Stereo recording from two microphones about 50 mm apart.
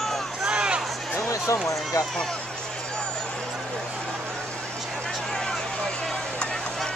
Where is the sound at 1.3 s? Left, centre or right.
Left.